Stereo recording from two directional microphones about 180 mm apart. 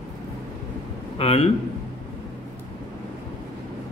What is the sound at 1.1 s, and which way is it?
Speech, 35° left (ahead or behind).